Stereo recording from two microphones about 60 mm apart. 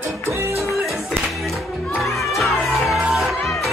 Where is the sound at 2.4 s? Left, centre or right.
Centre.